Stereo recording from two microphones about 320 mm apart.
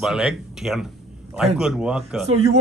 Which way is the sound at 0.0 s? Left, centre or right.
Centre.